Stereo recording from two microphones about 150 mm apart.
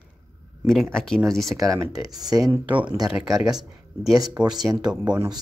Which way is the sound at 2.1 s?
25° right (ahead or behind).